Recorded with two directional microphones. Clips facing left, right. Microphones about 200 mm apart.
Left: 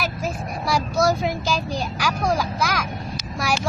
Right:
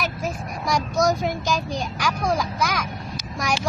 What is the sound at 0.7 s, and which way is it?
A child's voice, 5° left (ahead or behind).